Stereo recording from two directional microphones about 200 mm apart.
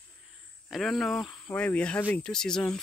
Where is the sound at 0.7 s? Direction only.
Centre (ahead or behind).